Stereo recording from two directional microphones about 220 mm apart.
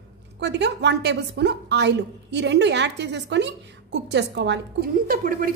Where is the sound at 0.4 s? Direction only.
50° right (ahead or behind).